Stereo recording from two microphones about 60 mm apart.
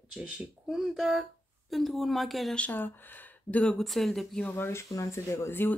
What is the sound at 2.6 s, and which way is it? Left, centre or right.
Speech, left.